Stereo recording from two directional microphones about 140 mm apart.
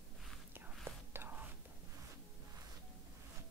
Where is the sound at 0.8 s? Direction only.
15° right (ahead or behind).